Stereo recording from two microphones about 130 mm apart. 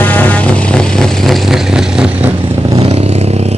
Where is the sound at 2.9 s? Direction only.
55° right (ahead or behind).